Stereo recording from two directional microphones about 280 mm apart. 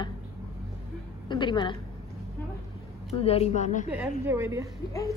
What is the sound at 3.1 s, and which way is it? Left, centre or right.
Speech, left.